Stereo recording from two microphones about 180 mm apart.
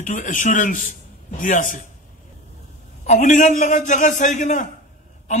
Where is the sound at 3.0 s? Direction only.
40° left (ahead or behind).